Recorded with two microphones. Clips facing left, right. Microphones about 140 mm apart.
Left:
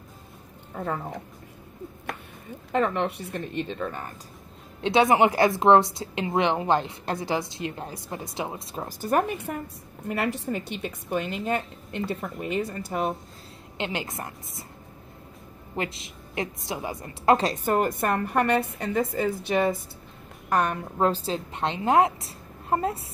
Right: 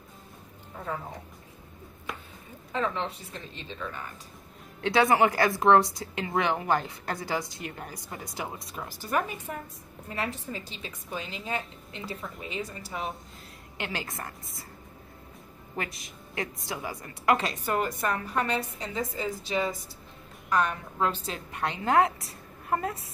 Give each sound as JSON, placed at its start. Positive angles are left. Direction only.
{"t": 0.7, "sound": "speech", "side_deg": 60}
{"t": 2.7, "sound": "a woman's voice", "side_deg": 60}
{"t": 4.8, "sound": "a woman's voice", "side_deg": 20}
{"t": 8.8, "sound": "speech", "side_deg": 45}
{"t": 9.5, "sound": "a woman's voice", "side_deg": 60}
{"t": 10.0, "sound": "a woman's voice", "side_deg": 70}
{"t": 13.7, "sound": "a woman's voice", "side_deg": 20}
{"t": 15.7, "sound": "a woman's voice", "side_deg": 25}
{"t": 17.6, "sound": "a woman's voice", "side_deg": 50}